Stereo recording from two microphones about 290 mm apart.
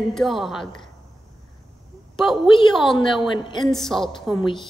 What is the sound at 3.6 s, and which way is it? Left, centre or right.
Speech, centre.